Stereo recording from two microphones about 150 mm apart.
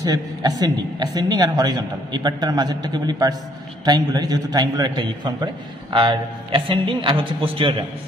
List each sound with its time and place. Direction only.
0.0 s a woman's voice: 25° right (ahead or behind)